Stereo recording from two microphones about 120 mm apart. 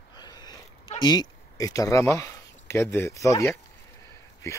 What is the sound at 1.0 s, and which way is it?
Speech, 35° left (ahead or behind).